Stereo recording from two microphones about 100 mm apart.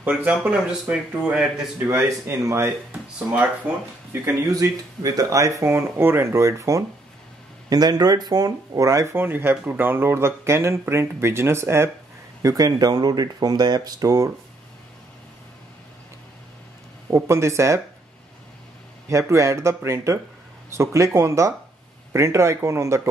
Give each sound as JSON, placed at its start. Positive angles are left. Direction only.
{"t": 0.0, "sound": "speech", "side_deg": -15}
{"t": 1.9, "sound": "speech", "side_deg": -30}
{"t": 2.9, "sound": "speech", "side_deg": -15}
{"t": 4.5, "sound": "speech", "side_deg": -35}
{"t": 7.7, "sound": "speech", "side_deg": -40}
{"t": 17.1, "sound": "speech", "side_deg": -30}
{"t": 19.0, "sound": "speech", "side_deg": -30}